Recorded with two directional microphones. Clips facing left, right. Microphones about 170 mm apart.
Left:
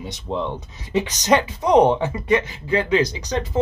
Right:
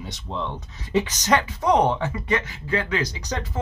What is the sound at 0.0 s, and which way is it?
Speech, 15° left (ahead or behind).